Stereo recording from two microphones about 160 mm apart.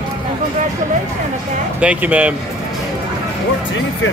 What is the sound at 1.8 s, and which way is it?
Speech, 10° right (ahead or behind).